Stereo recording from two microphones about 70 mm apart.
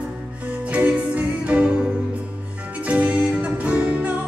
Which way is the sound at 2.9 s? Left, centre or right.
Centre.